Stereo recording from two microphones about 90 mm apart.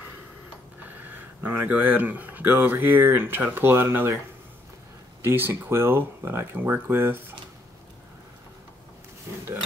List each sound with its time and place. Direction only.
0.8 s speech: 20° right (ahead or behind)
5.2 s speech: 25° right (ahead or behind)